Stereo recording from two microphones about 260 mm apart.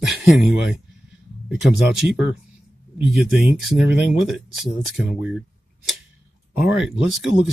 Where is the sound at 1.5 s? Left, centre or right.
Centre.